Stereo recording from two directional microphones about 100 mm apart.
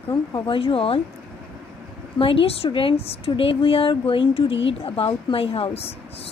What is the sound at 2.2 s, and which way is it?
A woman's voice, 65° left (ahead or behind).